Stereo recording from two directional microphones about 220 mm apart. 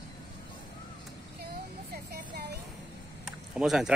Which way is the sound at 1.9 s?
45° right (ahead or behind).